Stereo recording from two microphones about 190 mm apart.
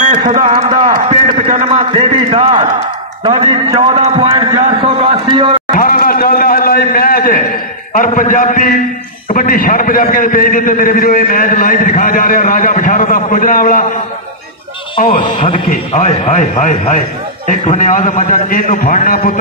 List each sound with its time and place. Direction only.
0.3 s speech: 40° right (ahead or behind)
0.7 s a man's voice: 25° right (ahead or behind)
5.8 s a sound: 50° left (ahead or behind)
9.3 s a man's voice: 45° left (ahead or behind)
15.0 s a man's voice: 50° left (ahead or behind)